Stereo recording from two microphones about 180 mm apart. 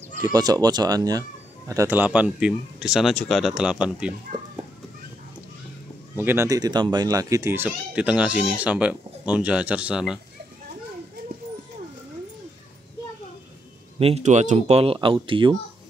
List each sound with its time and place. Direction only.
0.3 s speech: 20° right (ahead or behind); by 4.1 s 5° right (ahead or behind)
6.1 s speech: 15° right (ahead or behind)
13.9 s speech: 35° right (ahead or behind)